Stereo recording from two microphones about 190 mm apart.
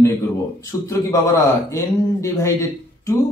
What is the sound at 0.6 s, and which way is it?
Speech, 15° left (ahead or behind).